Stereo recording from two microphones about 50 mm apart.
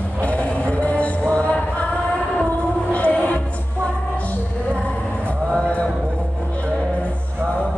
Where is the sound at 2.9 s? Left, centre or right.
Left.